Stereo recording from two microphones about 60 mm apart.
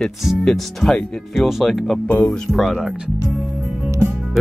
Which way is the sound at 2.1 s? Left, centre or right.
Left.